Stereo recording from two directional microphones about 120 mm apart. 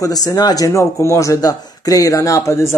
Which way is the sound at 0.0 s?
30° left (ahead or behind).